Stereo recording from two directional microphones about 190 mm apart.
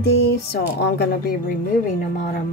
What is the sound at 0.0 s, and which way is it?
Speech, 55° left (ahead or behind).